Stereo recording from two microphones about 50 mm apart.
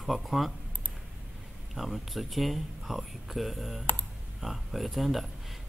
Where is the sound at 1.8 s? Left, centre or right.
Centre.